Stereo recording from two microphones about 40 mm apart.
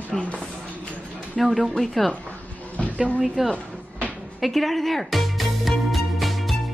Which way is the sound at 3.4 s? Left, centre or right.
Centre.